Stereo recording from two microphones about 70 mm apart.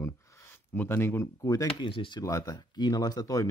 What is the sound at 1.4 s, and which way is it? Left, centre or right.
Speech, left.